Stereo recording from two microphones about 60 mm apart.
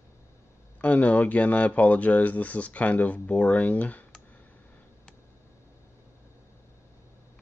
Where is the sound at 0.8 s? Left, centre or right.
Left.